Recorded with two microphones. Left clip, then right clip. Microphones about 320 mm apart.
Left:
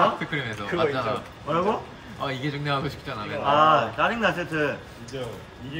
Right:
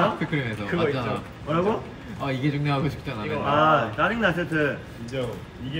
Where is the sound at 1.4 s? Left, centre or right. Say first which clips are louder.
Even; left.